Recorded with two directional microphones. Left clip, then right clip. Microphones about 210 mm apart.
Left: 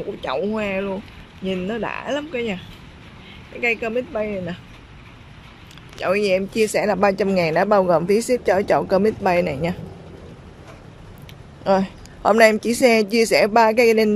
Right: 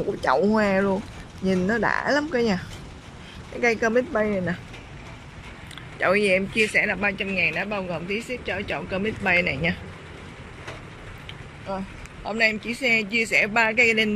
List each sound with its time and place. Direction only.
0.2 s speech: 5° right (ahead or behind)
3.6 s speech: 5° left (ahead or behind)
5.9 s speech: 10° left (ahead or behind)
11.6 s speech: 45° left (ahead or behind); by 14.1 s 20° left (ahead or behind)